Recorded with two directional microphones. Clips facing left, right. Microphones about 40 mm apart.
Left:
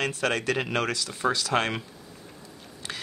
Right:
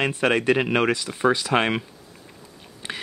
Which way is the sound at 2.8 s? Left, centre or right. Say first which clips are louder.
Right 4 dB; right.